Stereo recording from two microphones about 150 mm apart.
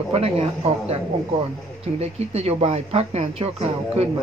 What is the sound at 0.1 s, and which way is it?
Speech, 40° right (ahead or behind).